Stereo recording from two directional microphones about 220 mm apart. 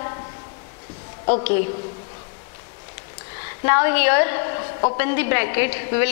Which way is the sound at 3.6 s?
15° left (ahead or behind).